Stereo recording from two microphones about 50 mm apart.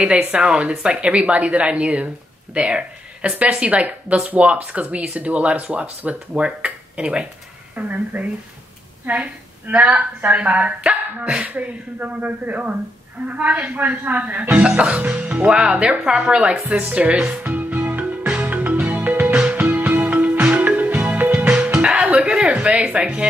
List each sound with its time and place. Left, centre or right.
0.3 s speech: right
7.7 s speech: right
11.4 s speech: right
14.6 s a woman's voice: right
17.5 s music: right
18.2 s music: right
18.5 s music: right
21.7 s a sound: right
22.8 s speech: right